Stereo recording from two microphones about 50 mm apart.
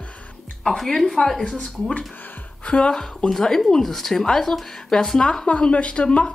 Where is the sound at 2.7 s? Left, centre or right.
Centre.